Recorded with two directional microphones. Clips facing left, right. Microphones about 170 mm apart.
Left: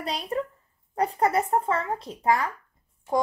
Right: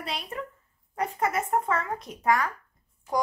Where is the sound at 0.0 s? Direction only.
40° left (ahead or behind).